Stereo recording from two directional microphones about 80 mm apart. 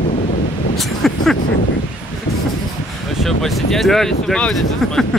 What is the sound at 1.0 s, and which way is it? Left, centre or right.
Vehicle, centre.